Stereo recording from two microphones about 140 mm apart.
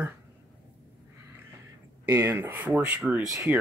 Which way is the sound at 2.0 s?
15° right (ahead or behind).